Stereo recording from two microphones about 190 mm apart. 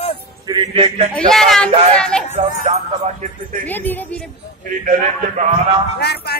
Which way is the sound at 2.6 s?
35° right (ahead or behind).